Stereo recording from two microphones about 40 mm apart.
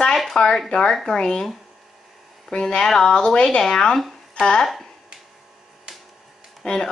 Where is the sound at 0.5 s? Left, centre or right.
Centre.